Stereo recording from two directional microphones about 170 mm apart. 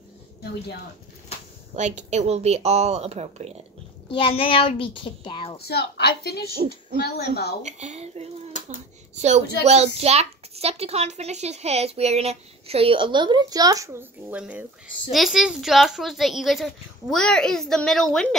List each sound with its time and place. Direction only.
1.8 s a woman's voice: 45° right (ahead or behind)
4.1 s a child's voice: 30° left (ahead or behind)
5.6 s a woman's voice: 70° left (ahead or behind)
7.6 s a woman's voice: 40° right (ahead or behind)
8.6 s a sound: 40° right (ahead or behind)
9.9 s a child's voice: 35° right (ahead or behind); by 18.3 s 5° left (ahead or behind)